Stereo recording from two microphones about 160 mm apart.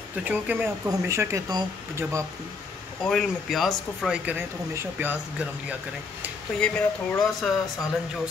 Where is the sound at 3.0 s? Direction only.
Centre (ahead or behind).